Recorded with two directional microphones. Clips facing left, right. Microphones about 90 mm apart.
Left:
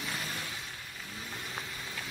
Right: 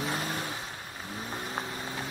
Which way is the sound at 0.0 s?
40° right (ahead or behind).